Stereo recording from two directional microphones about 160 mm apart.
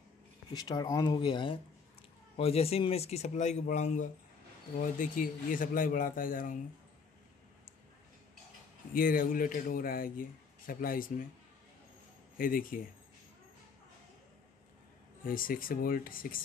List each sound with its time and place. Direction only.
0.5 s a man's voice: 25° left (ahead or behind); by 6.6 s 55° left (ahead or behind)
8.9 s a man's voice: 60° left (ahead or behind)
12.4 s a man's voice: 60° left (ahead or behind)
15.2 s a man's voice: 60° left (ahead or behind)